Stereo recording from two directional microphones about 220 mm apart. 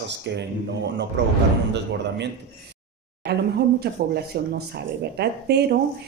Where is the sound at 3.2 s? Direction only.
45° right (ahead or behind).